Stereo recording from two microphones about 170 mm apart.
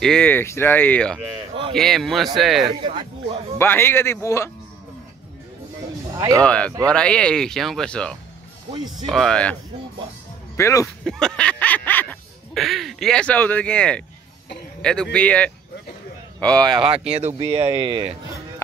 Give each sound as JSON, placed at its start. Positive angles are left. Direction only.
{"t": 0.0, "sound": "speech", "side_deg": 5}
{"t": 2.6, "sound": "speech", "side_deg": -25}
{"t": 3.5, "sound": "speech", "side_deg": 15}
{"t": 6.1, "sound": "speech", "side_deg": -20}
{"t": 6.4, "sound": "speech", "side_deg": 5}
{"t": 8.7, "sound": "speech", "side_deg": -25}
{"t": 9.1, "sound": "speech", "side_deg": 5}
{"t": 10.5, "sound": "speech", "side_deg": 15}
{"t": 11.1, "sound": "speech", "side_deg": 5}
{"t": 16.7, "sound": "speech", "side_deg": -35}